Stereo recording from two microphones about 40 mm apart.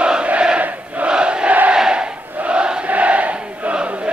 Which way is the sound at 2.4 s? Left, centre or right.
Right.